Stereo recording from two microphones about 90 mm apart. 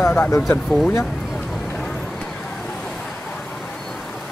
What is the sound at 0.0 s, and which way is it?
Speech, 20° left (ahead or behind).